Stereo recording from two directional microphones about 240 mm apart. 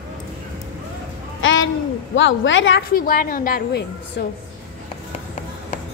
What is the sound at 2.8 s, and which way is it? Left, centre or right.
A woman's voice, left.